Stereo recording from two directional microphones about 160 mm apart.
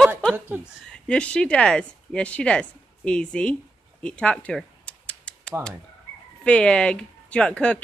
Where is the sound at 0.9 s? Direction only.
5° left (ahead or behind).